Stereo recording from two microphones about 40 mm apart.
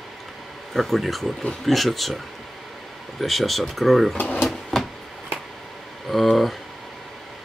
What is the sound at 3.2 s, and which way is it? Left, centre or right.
Speech, centre.